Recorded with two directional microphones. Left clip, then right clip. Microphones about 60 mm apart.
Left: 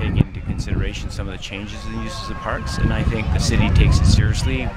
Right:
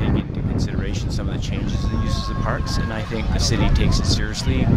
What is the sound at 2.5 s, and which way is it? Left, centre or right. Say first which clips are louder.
Speech: left 3 dB; centre.